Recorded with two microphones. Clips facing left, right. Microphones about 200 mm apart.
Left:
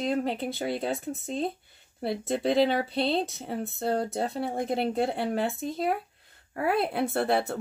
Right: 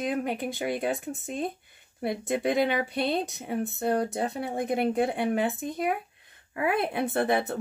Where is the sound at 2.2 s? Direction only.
15° right (ahead or behind).